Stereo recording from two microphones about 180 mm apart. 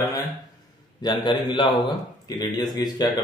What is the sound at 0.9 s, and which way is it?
Speech, 25° left (ahead or behind).